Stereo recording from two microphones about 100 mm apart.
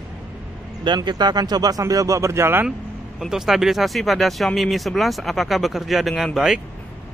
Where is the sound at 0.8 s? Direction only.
45° right (ahead or behind); by 2.6 s 25° right (ahead or behind).